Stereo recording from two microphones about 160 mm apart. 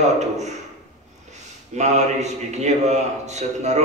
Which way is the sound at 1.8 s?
45° right (ahead or behind).